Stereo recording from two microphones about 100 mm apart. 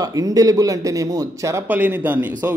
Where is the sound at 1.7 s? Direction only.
20° right (ahead or behind).